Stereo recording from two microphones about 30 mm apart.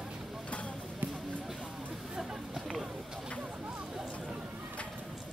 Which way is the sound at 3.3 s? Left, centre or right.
Right.